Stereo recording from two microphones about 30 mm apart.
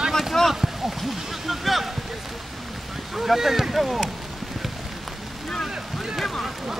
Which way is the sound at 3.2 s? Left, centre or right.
Centre.